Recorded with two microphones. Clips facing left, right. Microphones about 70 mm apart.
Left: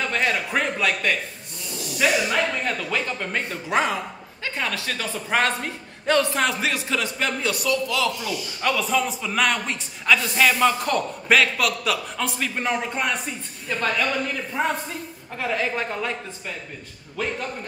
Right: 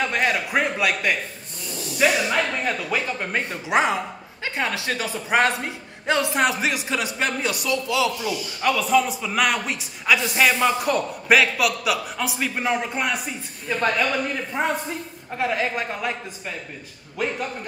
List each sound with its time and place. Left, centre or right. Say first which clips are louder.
0.1 s a man's voice: right 1 dB; centre
8.2 s a man's voice: right 1 dB; centre
13.7 s a man's voice: right 2 dB; centre